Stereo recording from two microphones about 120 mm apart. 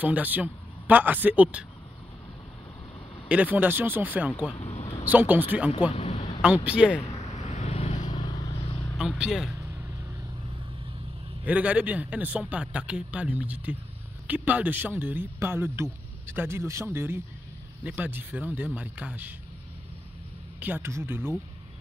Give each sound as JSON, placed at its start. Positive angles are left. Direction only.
{"t": 0.0, "sound": "a man's voice", "side_deg": -15}
{"t": 3.3, "sound": "a man's voice", "side_deg": -10}
{"t": 4.6, "sound": "a sound", "side_deg": 65}
{"t": 5.1, "sound": "a man's voice", "side_deg": -15}
{"t": 5.9, "sound": "a sound", "side_deg": 60}
{"t": 6.4, "sound": "a man's voice", "side_deg": -10}
{"t": 7.2, "sound": "vehicle", "side_deg": 65}
{"t": 8.1, "sound": "vehicle", "side_deg": 30}
{"t": 8.9, "sound": "a man's voice", "side_deg": -5}
{"t": 9.6, "sound": "vehicle", "side_deg": -25}
{"t": 11.4, "sound": "a man's voice", "side_deg": -10}
{"t": 20.6, "sound": "speech", "side_deg": -20}